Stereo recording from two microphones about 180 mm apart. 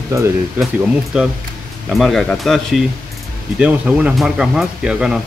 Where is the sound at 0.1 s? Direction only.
15° right (ahead or behind).